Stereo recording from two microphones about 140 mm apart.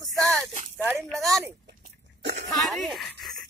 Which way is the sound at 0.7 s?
15° right (ahead or behind).